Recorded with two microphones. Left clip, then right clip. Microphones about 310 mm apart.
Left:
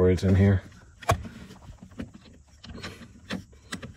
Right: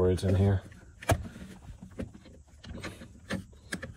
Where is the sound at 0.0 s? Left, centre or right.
Left.